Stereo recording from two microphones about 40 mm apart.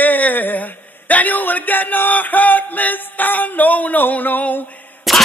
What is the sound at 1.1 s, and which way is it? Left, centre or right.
Music, left.